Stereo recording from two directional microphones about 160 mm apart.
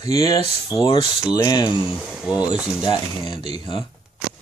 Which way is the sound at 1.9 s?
5° right (ahead or behind).